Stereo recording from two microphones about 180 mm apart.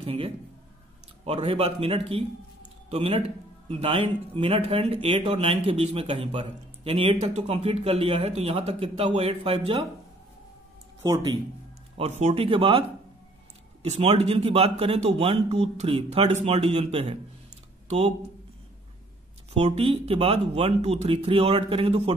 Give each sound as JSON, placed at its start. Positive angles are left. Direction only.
{"t": 0.0, "sound": "a man's voice", "side_deg": -30}
{"t": 11.0, "sound": "speech", "side_deg": -20}
{"t": 12.0, "sound": "a man's voice", "side_deg": -40}
{"t": 13.8, "sound": "a man's voice", "side_deg": -35}
{"t": 19.5, "sound": "a man's voice", "side_deg": -35}